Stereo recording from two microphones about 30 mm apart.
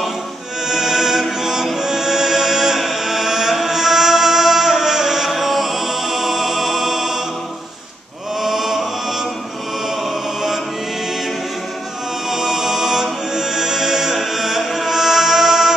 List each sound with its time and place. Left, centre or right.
0.7 s music: centre
8.4 s chant: centre
9.8 s music: centre
12.3 s music: centre